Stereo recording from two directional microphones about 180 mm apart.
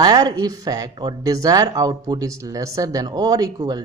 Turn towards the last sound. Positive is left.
turn(degrees=-20)  # may be behind; listen again after turning